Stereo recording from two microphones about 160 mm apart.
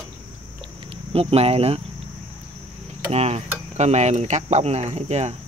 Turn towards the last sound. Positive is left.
turn(degrees=-45)  # may be behind; listen again after turning